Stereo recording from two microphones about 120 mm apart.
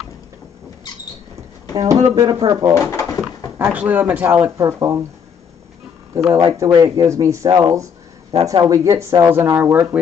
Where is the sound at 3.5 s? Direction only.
15° right (ahead or behind).